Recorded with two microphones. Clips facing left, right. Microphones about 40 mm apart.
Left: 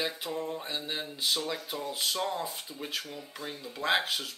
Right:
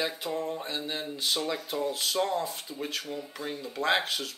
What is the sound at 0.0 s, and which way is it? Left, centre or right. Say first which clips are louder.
Speech: right 2 dB; centre.